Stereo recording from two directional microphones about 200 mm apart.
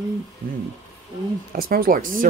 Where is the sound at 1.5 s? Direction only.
45° right (ahead or behind).